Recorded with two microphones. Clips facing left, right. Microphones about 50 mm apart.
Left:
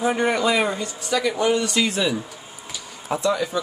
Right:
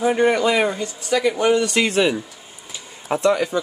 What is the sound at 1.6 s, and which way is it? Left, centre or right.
Speech, right.